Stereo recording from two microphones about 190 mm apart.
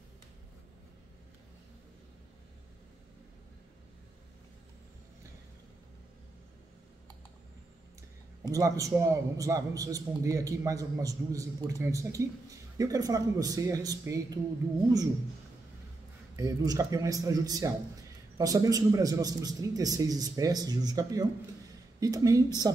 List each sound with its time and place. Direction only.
8.5 s a man's voice: 20° right (ahead or behind)
16.3 s a man's voice: 15° right (ahead or behind)